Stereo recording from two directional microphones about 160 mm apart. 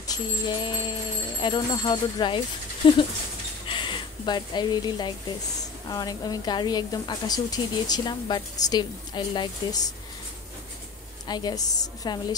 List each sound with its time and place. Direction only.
0.0 s music: 25° left (ahead or behind)
1.4 s a woman's voice: 25° left (ahead or behind)
2.8 s rodents: 35° left (ahead or behind)
3.6 s a sound: 30° left (ahead or behind)
5.9 s a woman's voice: 25° left (ahead or behind)
11.2 s a woman's voice: 25° left (ahead or behind)